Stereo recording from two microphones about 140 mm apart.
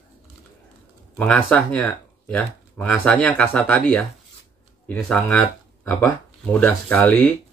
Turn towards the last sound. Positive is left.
turn(degrees=10)  # may be behind; listen again after turning